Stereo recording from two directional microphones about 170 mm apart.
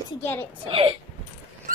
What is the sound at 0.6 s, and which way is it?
Speech, 35° right (ahead or behind).